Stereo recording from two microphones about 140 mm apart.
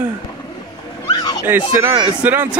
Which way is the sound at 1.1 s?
30° left (ahead or behind).